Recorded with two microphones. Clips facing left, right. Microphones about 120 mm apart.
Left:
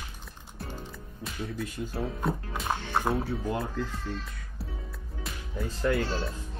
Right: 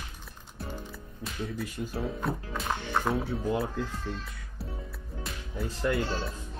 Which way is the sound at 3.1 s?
Centre (ahead or behind).